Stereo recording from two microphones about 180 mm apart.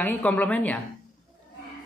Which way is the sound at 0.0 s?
10° left (ahead or behind).